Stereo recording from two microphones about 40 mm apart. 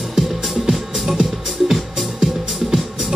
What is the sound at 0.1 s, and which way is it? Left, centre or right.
Music, centre.